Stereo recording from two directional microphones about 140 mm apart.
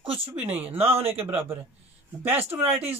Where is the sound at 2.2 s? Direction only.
15° right (ahead or behind).